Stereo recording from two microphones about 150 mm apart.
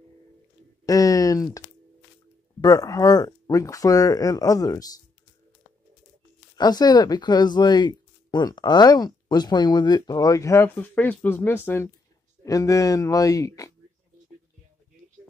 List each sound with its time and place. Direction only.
0.8 s speech: 25° left (ahead or behind)
2.6 s speech: 25° left (ahead or behind)
6.5 s speech: 25° left (ahead or behind)